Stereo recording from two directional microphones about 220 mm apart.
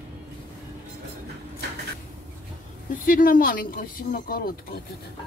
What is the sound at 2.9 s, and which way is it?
Speech, 40° left (ahead or behind).